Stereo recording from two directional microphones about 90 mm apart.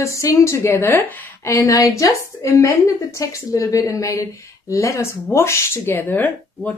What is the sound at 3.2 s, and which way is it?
Speech, 40° left (ahead or behind).